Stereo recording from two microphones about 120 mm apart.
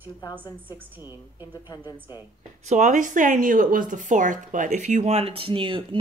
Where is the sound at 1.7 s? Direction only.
35° left (ahead or behind).